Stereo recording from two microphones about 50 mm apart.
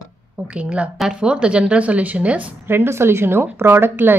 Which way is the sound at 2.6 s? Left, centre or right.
Right.